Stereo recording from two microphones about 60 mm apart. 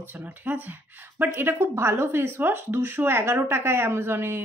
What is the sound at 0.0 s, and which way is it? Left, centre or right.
Speech, right.